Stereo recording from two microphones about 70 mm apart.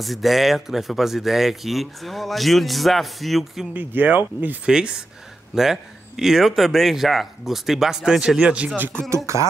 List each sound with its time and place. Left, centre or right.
0.0 s speech: centre
3.7 s speech: right
4.6 s speech: centre
9.1 s speech: right